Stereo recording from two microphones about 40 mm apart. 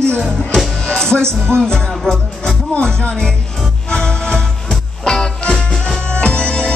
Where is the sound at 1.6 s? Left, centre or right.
Centre.